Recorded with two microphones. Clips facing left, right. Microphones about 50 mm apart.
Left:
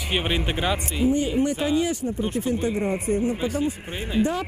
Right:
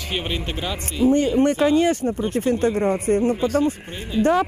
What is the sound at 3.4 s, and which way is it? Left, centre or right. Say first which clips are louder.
Speech: right 5 dB; centre.